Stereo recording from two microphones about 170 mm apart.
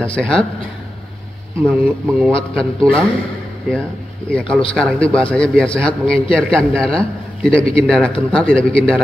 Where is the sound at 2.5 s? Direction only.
5° left (ahead or behind).